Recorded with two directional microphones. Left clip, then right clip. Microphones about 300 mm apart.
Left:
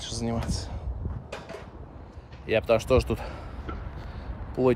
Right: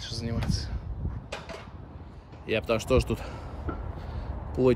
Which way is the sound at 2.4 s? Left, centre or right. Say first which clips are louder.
Left 4 dB; centre.